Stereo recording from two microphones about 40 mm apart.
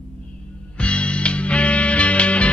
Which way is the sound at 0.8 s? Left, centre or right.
Left.